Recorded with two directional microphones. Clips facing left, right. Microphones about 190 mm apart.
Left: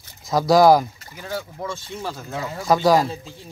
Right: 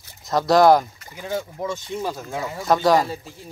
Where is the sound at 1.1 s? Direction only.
15° right (ahead or behind).